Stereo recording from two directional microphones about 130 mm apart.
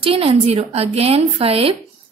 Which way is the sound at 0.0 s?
45° right (ahead or behind).